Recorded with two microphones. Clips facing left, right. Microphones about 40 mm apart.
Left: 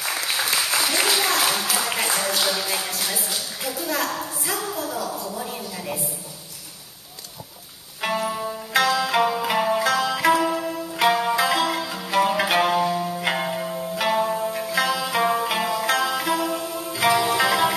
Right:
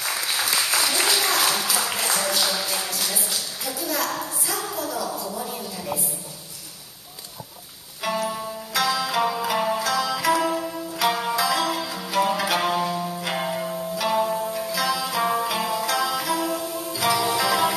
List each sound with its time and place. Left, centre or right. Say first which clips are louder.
0.0 s applause: left 1 dB; centre
4.6 s a sound: right 1 dB; centre
8.0 s music: left 1 dB; centre
9.2 s zither: left 2 dB; centre
10.4 s music: left 1 dB; centre
11.1 s zither: left 4 dB; centre
11.3 s music: left 2 dB; centre
14.5 s music: left 2 dB; centre